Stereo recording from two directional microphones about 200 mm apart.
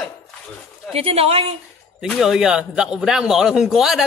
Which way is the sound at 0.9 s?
30° right (ahead or behind).